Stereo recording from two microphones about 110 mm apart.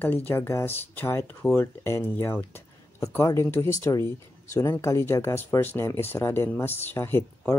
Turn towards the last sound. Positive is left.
turn(degrees=20)  # may be behind; listen again after turning